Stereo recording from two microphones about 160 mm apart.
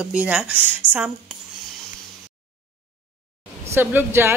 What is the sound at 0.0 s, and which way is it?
A woman's voice, 5° right (ahead or behind).